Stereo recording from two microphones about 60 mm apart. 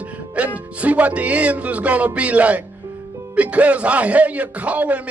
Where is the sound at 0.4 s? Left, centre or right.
Right.